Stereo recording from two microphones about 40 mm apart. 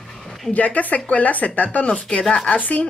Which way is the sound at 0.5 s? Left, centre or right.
Left.